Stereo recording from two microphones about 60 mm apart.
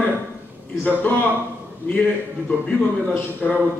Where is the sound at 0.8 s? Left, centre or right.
Left.